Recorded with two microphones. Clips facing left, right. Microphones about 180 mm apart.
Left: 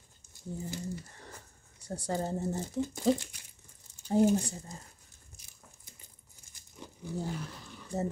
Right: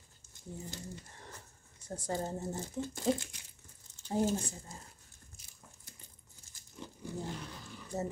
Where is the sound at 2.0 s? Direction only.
35° left (ahead or behind).